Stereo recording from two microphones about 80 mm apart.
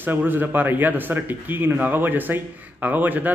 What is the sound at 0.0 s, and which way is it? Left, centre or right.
Speech, right.